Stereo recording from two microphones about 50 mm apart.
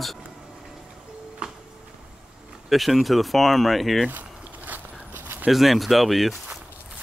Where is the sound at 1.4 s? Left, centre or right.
Centre.